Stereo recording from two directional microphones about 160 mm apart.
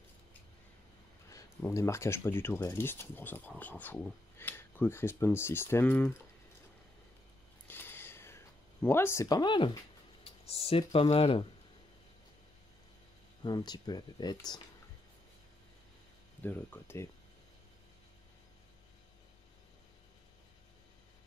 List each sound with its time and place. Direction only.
1.7 s speech: 15° left (ahead or behind)
7.6 s a sound: 15° left (ahead or behind); by 9.7 s 30° left (ahead or behind)
10.2 s speech: 40° left (ahead or behind)
13.4 s speech: 25° left (ahead or behind)
16.4 s speech: 10° left (ahead or behind)